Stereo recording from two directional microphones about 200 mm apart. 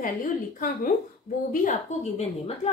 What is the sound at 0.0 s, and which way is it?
A woman's voice, 45° left (ahead or behind).